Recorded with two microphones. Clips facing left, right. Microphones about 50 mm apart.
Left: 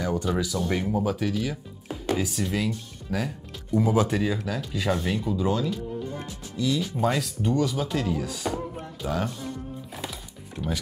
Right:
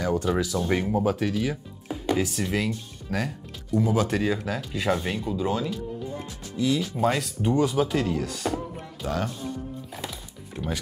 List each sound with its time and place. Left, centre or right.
0.0 s speech: centre
1.1 s speech: centre
3.7 s speech: left
4.1 s speech: centre
6.8 s speech: centre
7.4 s speech: right
7.8 s speech: centre
9.9 s music: centre